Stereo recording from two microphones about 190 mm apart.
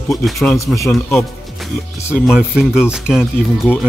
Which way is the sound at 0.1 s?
Centre (ahead or behind).